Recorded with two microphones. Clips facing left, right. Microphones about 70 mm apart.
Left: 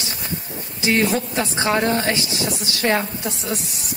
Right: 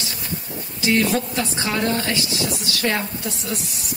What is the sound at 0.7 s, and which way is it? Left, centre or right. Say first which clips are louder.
A woman's voice: even; left.